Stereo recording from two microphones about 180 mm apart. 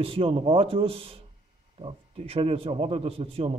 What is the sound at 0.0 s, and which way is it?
A man's voice, 30° right (ahead or behind).